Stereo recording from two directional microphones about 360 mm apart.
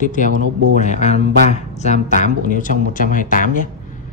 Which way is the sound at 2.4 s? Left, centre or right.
Left.